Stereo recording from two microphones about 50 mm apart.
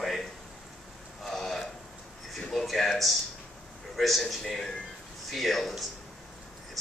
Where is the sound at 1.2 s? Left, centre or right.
Centre.